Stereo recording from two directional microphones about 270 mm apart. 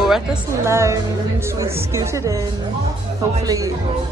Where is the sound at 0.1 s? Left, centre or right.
Centre.